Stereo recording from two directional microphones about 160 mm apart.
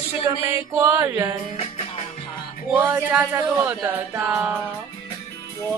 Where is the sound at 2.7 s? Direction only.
10° right (ahead or behind).